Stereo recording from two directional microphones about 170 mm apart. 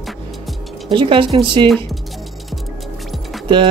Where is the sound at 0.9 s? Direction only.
30° right (ahead or behind).